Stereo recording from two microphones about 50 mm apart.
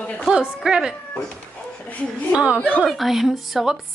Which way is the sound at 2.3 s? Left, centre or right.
Right.